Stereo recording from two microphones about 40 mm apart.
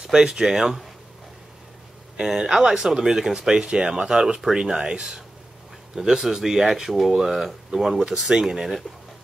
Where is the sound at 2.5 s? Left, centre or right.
Centre.